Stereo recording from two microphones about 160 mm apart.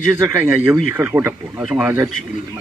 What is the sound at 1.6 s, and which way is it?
Speech, 5° right (ahead or behind).